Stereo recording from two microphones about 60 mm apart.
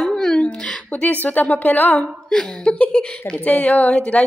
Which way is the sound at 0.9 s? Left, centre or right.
Left.